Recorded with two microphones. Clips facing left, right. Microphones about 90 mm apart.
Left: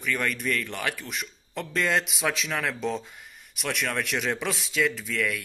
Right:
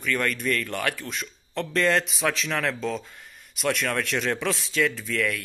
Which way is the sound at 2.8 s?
20° left (ahead or behind).